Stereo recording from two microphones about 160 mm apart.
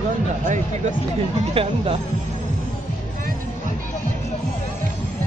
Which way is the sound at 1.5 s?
35° right (ahead or behind).